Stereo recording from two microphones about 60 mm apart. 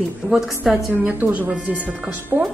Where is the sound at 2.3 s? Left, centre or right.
Right.